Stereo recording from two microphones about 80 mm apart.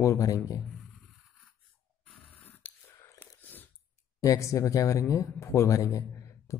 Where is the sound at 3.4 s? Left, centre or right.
Left.